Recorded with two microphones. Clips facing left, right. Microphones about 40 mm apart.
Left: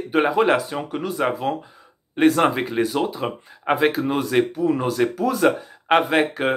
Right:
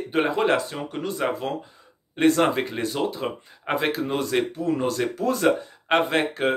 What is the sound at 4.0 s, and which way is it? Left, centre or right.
Speech, left.